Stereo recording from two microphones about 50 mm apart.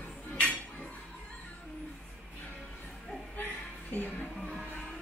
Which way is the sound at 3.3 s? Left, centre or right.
Left.